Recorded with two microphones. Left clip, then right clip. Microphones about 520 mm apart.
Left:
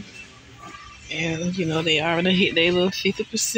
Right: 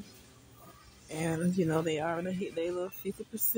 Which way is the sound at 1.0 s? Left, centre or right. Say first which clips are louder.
Left 7 dB; right.